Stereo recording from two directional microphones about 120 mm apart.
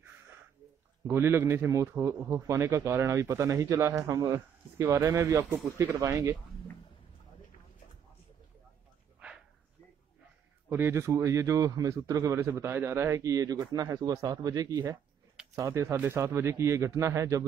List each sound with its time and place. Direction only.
1.0 s a man's voice: 20° right (ahead or behind)
10.7 s a man's voice: 25° right (ahead or behind)